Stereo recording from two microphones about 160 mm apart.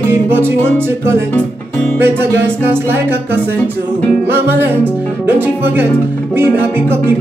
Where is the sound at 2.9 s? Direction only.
15° right (ahead or behind).